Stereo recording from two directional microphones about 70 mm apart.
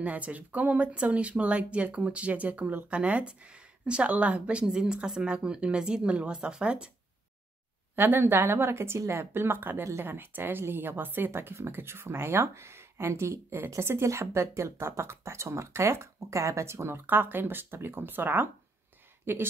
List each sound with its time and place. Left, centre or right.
0.0 s a woman's voice: right
7.9 s speech: right
17.0 s speech: right